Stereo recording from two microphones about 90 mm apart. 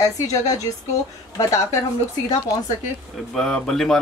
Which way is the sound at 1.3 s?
35° left (ahead or behind).